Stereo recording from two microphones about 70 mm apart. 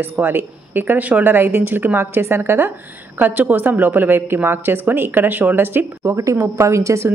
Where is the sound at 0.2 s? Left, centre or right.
Right.